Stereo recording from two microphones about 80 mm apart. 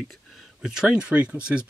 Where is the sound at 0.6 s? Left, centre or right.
Centre.